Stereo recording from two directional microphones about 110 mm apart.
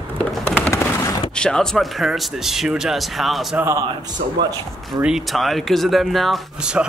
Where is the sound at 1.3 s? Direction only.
5° left (ahead or behind).